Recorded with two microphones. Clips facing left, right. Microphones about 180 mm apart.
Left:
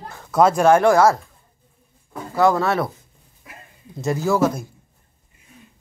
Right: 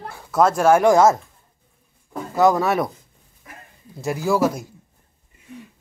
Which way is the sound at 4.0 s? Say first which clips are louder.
Left 1 dB; 10° right (ahead or behind).